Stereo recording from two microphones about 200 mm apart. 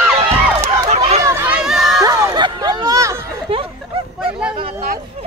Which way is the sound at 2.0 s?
20° right (ahead or behind).